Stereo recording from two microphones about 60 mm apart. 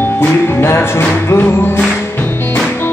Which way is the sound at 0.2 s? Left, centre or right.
Left.